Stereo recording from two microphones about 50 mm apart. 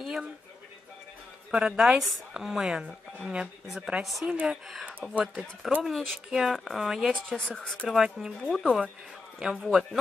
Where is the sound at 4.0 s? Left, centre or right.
Centre.